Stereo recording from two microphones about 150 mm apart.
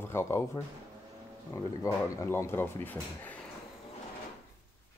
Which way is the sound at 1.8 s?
20° left (ahead or behind).